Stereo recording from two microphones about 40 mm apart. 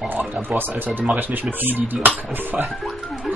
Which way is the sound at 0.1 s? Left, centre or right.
Right.